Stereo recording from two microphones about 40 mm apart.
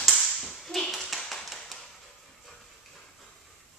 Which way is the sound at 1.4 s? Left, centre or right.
Centre.